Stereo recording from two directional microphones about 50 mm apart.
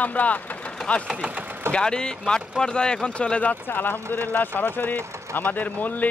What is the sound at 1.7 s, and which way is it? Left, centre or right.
Speech, centre.